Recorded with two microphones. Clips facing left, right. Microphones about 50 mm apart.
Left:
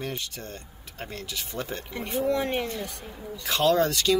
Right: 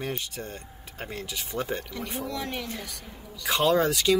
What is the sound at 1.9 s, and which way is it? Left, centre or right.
Speech, left.